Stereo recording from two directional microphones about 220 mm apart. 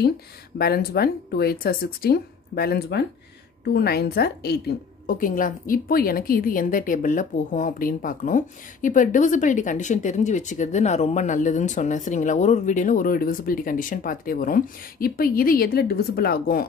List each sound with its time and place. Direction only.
0.6 s a woman's voice: 45° left (ahead or behind)